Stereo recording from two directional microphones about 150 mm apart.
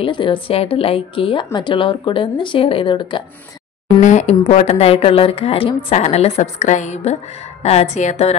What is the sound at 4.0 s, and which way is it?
A woman's voice, 50° left (ahead or behind).